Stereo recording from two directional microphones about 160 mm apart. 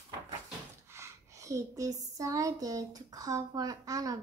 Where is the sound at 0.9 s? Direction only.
20° right (ahead or behind).